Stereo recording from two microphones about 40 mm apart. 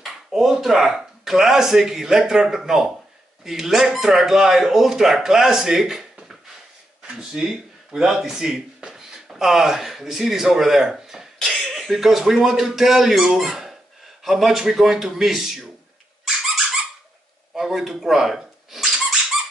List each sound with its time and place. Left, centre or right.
0.3 s speech: centre
7.0 s a sound: centre
7.4 s speech: centre
10.9 s a sound: centre
11.7 s speech: centre
17.6 s squeak: centre